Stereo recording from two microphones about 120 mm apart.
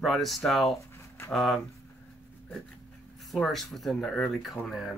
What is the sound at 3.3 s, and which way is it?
Speech, centre (ahead or behind).